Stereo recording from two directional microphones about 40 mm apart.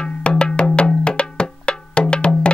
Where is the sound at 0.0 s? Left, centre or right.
Left.